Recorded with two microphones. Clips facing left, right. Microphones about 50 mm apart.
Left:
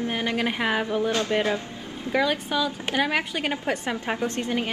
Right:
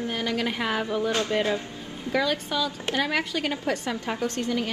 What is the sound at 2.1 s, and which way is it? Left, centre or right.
A woman's voice, centre.